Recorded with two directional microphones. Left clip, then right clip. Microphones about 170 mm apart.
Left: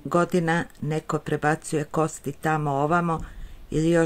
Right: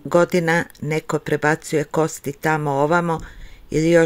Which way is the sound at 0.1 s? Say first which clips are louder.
Right 6 dB; 15° right (ahead or behind).